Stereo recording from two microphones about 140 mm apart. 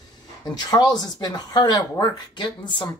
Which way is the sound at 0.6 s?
30° left (ahead or behind).